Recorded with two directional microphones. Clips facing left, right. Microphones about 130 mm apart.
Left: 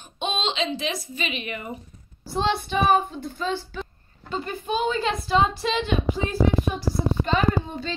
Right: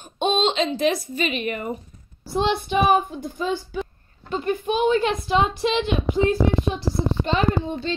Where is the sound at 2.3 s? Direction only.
15° right (ahead or behind).